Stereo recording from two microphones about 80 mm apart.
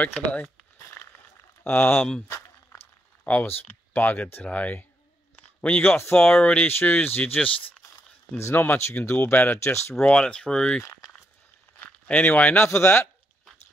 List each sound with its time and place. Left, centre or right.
0.1 s speech: centre
1.6 s speech: left
2.2 s a sound: left
3.3 s speech: left
5.9 s speech: left
6.3 s speech: centre
6.7 s speech: left
8.4 s speech: left
9.6 s speech: left
9.9 s speech: centre
11.8 s speech: centre
12.6 s speech: left